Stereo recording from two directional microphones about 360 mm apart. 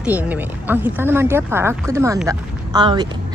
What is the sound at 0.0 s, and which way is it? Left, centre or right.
Speech, centre.